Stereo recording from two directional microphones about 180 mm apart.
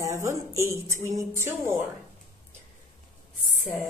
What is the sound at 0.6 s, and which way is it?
A woman's voice, 15° right (ahead or behind).